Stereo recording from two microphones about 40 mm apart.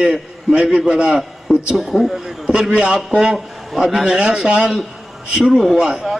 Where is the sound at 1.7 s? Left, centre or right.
Centre.